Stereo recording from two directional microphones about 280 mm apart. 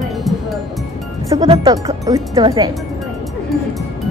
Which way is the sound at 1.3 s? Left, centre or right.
Centre.